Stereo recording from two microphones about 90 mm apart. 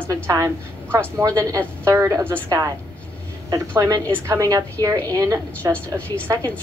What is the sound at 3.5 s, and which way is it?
A woman's voice, 35° right (ahead or behind).